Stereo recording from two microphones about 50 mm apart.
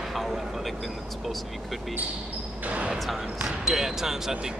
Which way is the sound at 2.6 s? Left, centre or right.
Right.